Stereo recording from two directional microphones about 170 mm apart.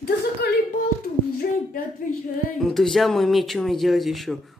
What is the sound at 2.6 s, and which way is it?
Speech, centre (ahead or behind).